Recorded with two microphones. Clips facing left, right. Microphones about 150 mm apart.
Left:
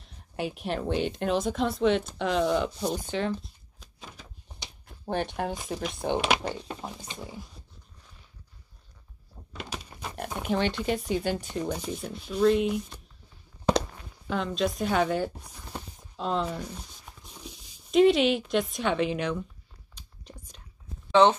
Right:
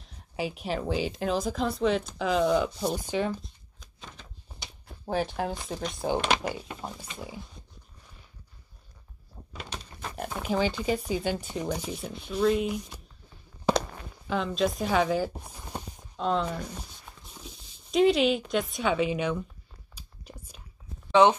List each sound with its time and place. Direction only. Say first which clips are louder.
0.0 s speech: even; centre (ahead or behind)
3.4 s a sound: right 1 dB; 5° left (ahead or behind)
5.0 s speech: right 1 dB; 5° right (ahead or behind)
6.4 s speech: even; 10° right (ahead or behind)
9.6 s a sound: left 1 dB; 10° left (ahead or behind)
10.4 s speech: even; centre (ahead or behind)
14.2 s speech: right 1 dB; centre (ahead or behind)
15.3 s speech: right 2 dB; 25° right (ahead or behind)
16.2 s speech: right 1 dB; centre (ahead or behind)
20.0 s whispering: right 1 dB; 10° right (ahead or behind)
21.1 s speech: even; 10° right (ahead or behind)